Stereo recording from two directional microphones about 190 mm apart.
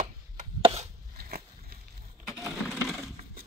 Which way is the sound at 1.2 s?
55° right (ahead or behind).